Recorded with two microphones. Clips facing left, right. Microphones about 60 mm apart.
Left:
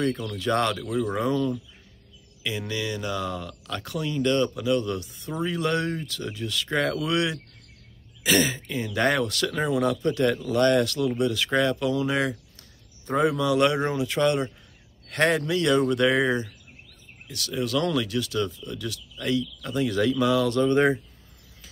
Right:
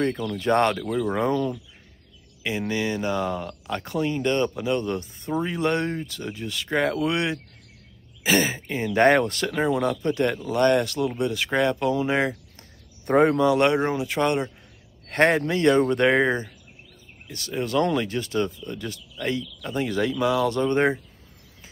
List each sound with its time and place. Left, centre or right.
0.0 s speech: right
13.0 s speech: right
13.4 s speech: right